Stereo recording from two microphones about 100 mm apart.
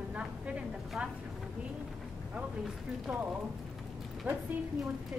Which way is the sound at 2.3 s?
10° right (ahead or behind).